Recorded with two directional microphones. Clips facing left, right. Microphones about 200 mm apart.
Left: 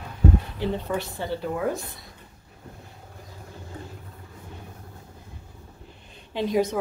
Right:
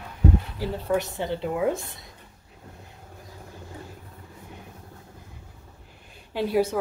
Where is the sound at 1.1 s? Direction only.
20° right (ahead or behind).